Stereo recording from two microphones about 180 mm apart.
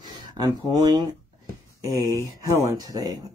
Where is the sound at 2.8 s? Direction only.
20° right (ahead or behind).